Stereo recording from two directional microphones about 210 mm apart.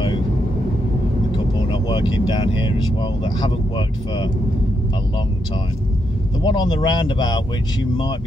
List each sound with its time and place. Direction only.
1.3 s speech: 20° left (ahead or behind)
6.4 s speech: 20° left (ahead or behind)